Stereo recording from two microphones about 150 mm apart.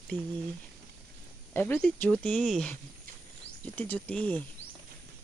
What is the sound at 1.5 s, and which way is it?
Speech, 15° left (ahead or behind).